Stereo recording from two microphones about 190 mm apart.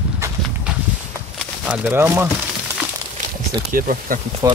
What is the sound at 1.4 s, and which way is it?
Speech, 5° right (ahead or behind).